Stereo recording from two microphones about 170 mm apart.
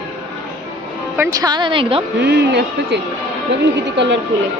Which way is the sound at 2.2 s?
90° right.